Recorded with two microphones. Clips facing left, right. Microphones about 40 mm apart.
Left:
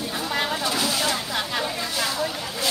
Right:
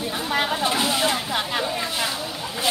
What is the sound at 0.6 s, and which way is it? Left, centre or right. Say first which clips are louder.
Vehicle: right 2 dB; right.